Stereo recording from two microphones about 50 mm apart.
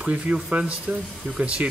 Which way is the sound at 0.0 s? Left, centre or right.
Right.